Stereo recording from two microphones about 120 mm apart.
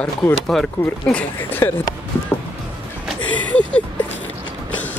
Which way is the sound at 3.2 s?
10° left (ahead or behind).